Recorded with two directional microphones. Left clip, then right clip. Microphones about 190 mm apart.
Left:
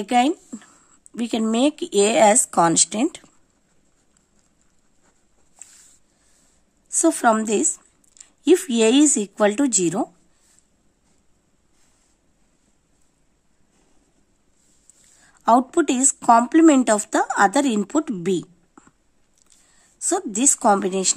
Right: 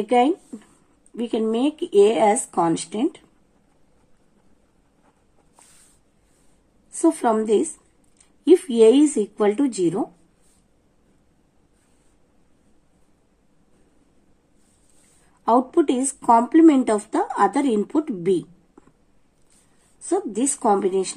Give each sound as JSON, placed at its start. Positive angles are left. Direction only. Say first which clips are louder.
{"t": 0.0, "sound": "speech", "louder": "right 1 dB", "side_deg": 45}
{"t": 7.0, "sound": "speech", "louder": "left 2 dB", "side_deg": 50}
{"t": 15.4, "sound": "speech", "louder": "left 1 dB", "side_deg": 50}
{"t": 20.1, "sound": "speech", "louder": "left 1 dB", "side_deg": 45}